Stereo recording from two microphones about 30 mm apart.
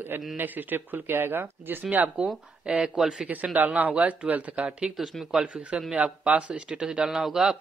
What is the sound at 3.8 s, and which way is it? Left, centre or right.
Speech, right.